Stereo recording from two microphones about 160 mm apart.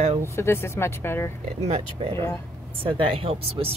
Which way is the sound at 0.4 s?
15° left (ahead or behind).